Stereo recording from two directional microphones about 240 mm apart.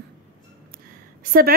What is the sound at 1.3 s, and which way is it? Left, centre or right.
Speech, right.